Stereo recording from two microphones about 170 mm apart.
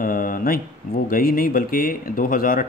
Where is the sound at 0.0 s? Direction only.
55° left (ahead or behind).